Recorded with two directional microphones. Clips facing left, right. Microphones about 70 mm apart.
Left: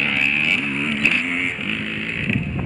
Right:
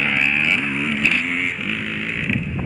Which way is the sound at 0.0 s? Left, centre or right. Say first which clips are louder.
Right 1 dB; centre.